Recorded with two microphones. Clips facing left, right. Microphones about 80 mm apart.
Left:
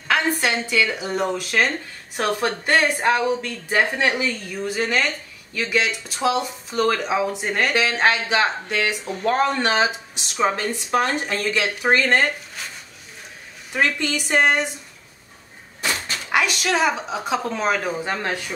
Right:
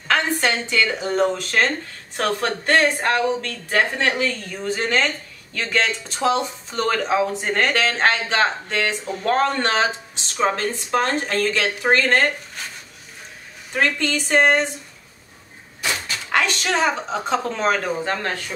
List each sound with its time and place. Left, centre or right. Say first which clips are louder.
0.4 s speech: even; centre
13.7 s speech: right 1 dB; centre
16.3 s speech: even; centre